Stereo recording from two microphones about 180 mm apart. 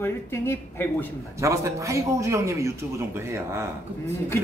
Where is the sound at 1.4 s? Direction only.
15° right (ahead or behind).